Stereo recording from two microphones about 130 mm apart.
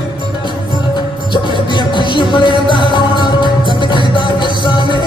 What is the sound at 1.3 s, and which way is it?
Music, 35° left (ahead or behind).